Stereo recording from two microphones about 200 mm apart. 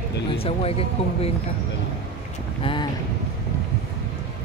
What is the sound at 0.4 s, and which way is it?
Speech, 30° left (ahead or behind).